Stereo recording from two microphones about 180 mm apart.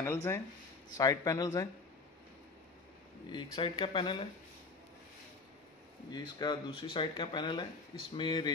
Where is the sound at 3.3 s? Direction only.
25° left (ahead or behind).